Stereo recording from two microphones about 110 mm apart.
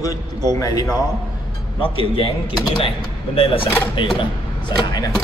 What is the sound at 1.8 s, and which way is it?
A man's voice, 50° left (ahead or behind).